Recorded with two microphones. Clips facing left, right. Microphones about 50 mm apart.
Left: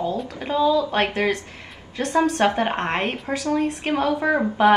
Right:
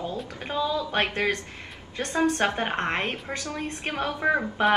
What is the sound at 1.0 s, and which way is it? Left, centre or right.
A woman's voice, left.